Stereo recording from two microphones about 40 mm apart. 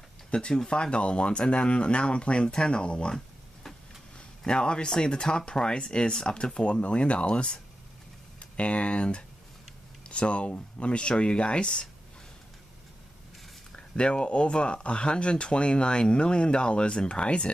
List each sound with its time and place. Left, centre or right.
0.3 s speech: left
4.5 s speech: left
13.7 s speech: left